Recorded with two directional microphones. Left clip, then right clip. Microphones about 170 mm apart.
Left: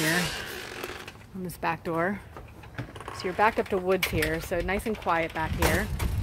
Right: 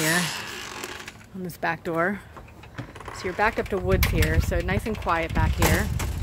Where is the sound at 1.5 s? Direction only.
10° right (ahead or behind).